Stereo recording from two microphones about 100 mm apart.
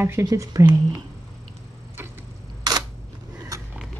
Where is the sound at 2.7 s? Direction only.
40° right (ahead or behind).